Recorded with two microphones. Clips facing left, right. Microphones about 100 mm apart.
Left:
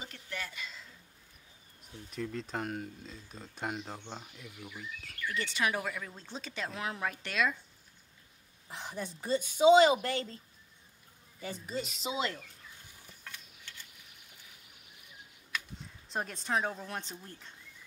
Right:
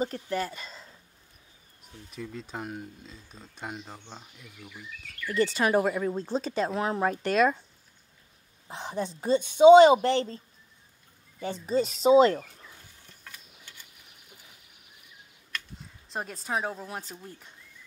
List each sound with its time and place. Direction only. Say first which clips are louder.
0.0 s speech: right 13 dB; 40° right (ahead or behind)
2.0 s speech: left 1 dB; 5° right (ahead or behind)
5.3 s speech: right 9 dB; 40° right (ahead or behind)
8.6 s a woman's voice: right 7 dB; 25° right (ahead or behind)
11.4 s speech: right 10 dB; 30° right (ahead or behind)
13.2 s mechanisms: even; 5° right (ahead or behind)
15.5 s speech: even; centre (ahead or behind)